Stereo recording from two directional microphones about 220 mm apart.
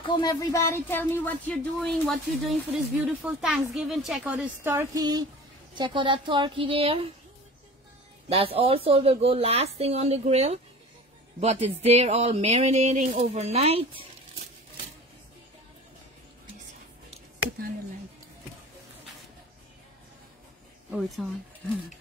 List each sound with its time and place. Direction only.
0.0 s speech: 20° left (ahead or behind); by 7.1 s 25° right (ahead or behind)
8.3 s speech: 25° right (ahead or behind)